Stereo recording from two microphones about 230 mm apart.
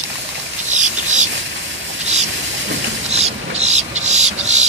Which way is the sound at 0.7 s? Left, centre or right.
Right.